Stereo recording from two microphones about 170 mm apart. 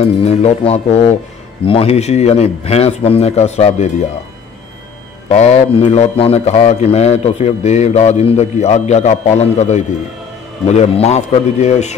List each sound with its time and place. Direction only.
0.0 s speech: 35° left (ahead or behind)
5.3 s a man's voice: 40° left (ahead or behind)